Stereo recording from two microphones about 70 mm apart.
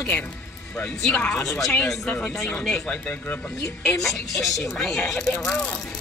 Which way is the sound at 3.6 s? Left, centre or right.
Centre.